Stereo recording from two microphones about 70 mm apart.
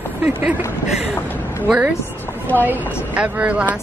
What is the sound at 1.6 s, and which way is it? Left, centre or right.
A woman's voice, centre.